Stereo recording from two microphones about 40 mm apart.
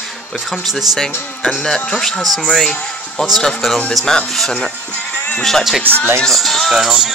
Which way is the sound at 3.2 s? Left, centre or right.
Centre.